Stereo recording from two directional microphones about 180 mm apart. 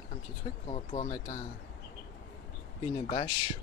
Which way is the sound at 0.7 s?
35° left (ahead or behind).